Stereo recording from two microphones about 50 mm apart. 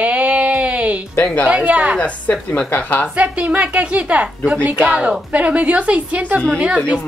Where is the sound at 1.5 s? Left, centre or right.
Right.